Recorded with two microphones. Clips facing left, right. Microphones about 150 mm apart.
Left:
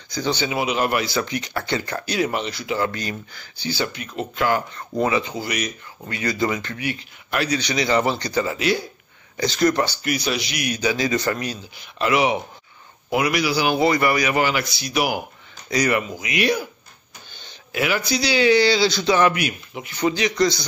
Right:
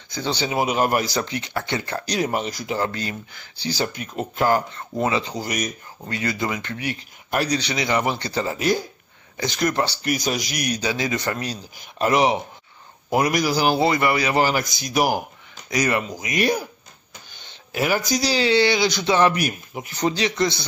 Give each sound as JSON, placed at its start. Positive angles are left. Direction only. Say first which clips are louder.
{"t": 0.1, "sound": "a man's voice", "louder": "left 1 dB", "side_deg": -30}
{"t": 1.3, "sound": "speech", "louder": "left 1 dB", "side_deg": -25}
{"t": 2.0, "sound": "a man's voice", "louder": "even", "side_deg": -40}
{"t": 6.0, "sound": "speech", "louder": "left 2 dB", "side_deg": -25}
{"t": 7.3, "sound": "a man's voice", "louder": "even", "side_deg": -35}
{"t": 7.7, "sound": "speech", "louder": "left 5 dB", "side_deg": -15}
{"t": 8.2, "sound": "speech", "louder": "left 2 dB", "side_deg": -30}
{"t": 10.1, "sound": "a man's voice", "louder": "even", "side_deg": -45}
{"t": 11.4, "sound": "a man's voice", "louder": "left 1 dB", "side_deg": -40}
{"t": 13.7, "sound": "a man's voice", "louder": "left 1 dB", "side_deg": -25}
{"t": 15.7, "sound": "speech", "louder": "left 1 dB", "side_deg": -25}
{"t": 17.7, "sound": "a man's voice", "louder": "right 1 dB", "side_deg": -40}
{"t": 19.3, "sound": "a man's voice", "louder": "right 1 dB", "side_deg": -40}